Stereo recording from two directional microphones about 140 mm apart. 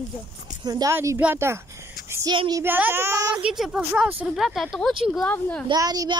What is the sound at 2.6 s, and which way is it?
Speech, 15° right (ahead or behind).